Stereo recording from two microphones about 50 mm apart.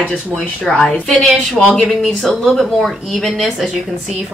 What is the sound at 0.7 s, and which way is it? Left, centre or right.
Speech, left.